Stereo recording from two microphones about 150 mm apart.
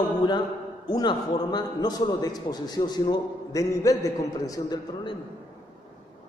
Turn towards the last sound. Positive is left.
turn(degrees=30)  # may be behind; listen again after turning